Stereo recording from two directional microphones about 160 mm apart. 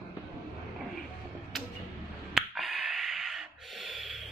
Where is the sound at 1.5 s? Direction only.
Centre (ahead or behind).